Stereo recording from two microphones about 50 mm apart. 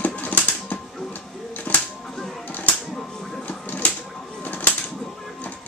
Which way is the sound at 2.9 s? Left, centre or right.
Centre.